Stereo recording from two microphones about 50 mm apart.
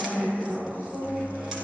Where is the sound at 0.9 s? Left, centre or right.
Right.